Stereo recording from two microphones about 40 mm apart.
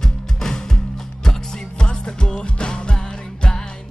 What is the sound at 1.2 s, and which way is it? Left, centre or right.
Music, centre.